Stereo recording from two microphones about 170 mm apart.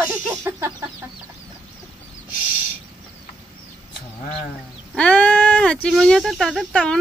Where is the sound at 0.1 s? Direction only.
15° right (ahead or behind).